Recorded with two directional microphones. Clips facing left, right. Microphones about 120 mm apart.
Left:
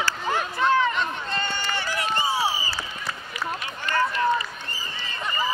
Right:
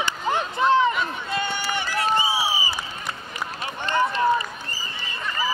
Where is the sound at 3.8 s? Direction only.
25° right (ahead or behind).